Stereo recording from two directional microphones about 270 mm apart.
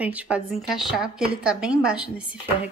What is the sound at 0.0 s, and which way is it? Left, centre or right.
Speech, centre.